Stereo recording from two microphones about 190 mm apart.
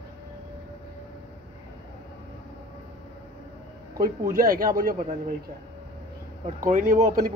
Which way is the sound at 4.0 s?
50° right (ahead or behind).